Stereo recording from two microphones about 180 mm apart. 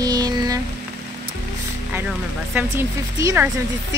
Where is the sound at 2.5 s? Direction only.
15° right (ahead or behind).